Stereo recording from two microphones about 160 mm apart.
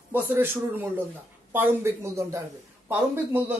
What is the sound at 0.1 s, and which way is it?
Speech, 10° right (ahead or behind).